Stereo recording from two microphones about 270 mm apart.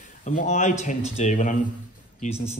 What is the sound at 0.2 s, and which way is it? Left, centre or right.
Speech, left.